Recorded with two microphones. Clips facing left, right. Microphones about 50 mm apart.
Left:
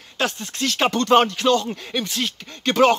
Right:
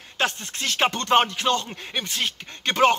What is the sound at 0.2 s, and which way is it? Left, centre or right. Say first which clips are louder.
Speech: left 2 dB; right.